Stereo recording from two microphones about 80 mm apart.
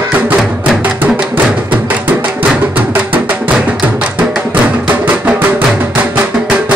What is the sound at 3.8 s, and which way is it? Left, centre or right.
Music, centre.